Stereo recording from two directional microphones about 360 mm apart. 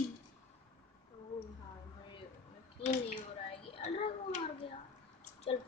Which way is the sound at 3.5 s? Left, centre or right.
Centre.